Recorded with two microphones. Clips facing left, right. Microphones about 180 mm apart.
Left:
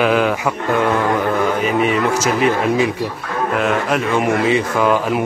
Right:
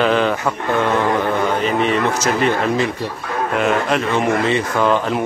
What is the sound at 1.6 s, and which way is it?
Speech, 5° left (ahead or behind).